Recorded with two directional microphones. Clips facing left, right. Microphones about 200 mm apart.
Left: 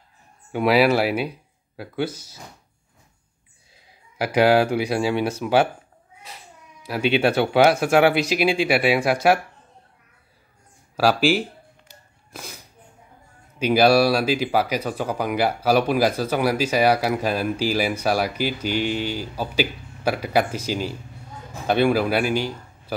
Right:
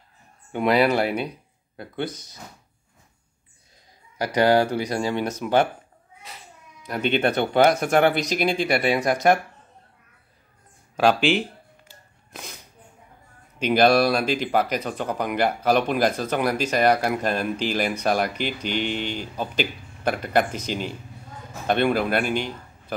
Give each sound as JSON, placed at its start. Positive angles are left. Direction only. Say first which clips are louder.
{"t": 0.5, "sound": "speech", "louder": "left 2 dB", "side_deg": 5}
{"t": 4.2, "sound": "speech", "louder": "left 2 dB", "side_deg": 10}
{"t": 6.8, "sound": "speech", "louder": "left 2 dB", "side_deg": 5}
{"t": 11.0, "sound": "speech", "louder": "left 1 dB", "side_deg": 5}
{"t": 12.3, "sound": "a sound", "louder": "left 1 dB", "side_deg": 0}
{"t": 13.7, "sound": "speech", "louder": "left 2 dB", "side_deg": 5}